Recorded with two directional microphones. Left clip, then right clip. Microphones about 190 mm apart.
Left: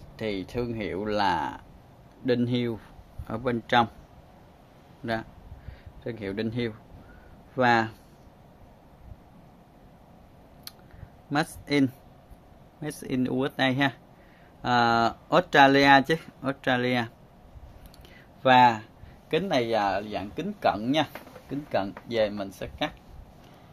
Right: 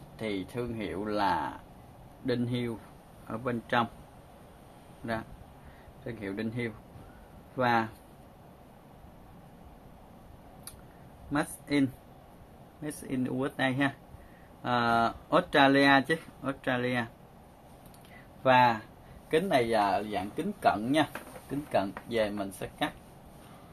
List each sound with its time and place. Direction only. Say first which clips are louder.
0.2 s speech: left 4 dB; 65° left (ahead or behind)
6.0 s speech: left 5 dB; 65° left (ahead or behind)
11.3 s speech: left 4 dB; 70° left (ahead or behind)
12.8 s speech: left 5 dB; 70° left (ahead or behind)
18.4 s speech: left 5 dB; 65° left (ahead or behind)
19.3 s speech: left 1 dB; 55° left (ahead or behind)